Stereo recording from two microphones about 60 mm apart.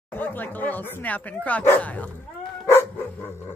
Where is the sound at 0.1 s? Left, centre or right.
Left.